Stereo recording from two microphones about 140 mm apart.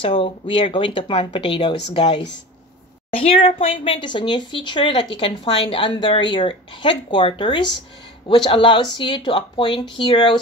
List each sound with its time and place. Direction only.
0.0 s speech: 40° left (ahead or behind)